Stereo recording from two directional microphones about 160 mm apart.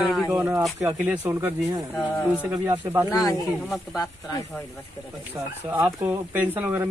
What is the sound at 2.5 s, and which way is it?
Speech, 25° right (ahead or behind).